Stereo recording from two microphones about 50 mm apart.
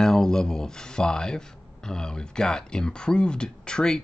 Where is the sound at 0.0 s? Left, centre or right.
Centre.